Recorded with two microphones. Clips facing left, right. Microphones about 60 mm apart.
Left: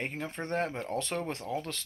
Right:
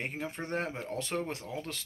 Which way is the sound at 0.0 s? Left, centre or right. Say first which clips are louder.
Left 1 dB; centre.